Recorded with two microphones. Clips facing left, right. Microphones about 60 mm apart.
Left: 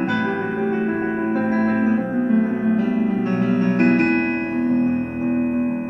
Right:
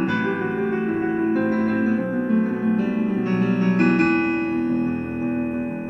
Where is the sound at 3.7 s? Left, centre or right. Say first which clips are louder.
Left 1 dB; left.